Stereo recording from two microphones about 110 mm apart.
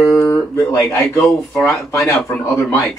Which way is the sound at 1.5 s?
10° left (ahead or behind).